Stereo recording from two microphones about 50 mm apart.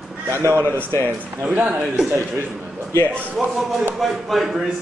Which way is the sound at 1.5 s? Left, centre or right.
Right.